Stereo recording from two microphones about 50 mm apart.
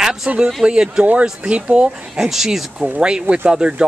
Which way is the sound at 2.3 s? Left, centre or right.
Centre.